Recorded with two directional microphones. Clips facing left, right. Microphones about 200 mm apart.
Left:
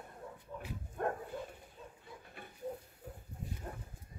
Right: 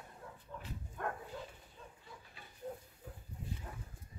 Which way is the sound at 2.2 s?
55° left (ahead or behind).